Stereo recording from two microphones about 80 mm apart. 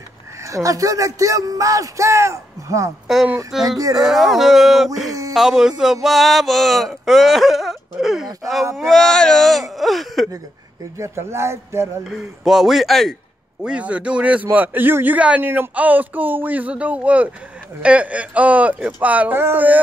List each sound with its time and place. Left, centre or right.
0.5 s speech: right
3.9 s speech: centre
11.0 s speech: right
12.0 s speech: centre
13.6 s a man's voice: centre